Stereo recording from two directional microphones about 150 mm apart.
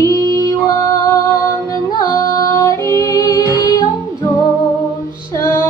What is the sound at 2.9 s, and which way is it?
Female singing, 25° left (ahead or behind).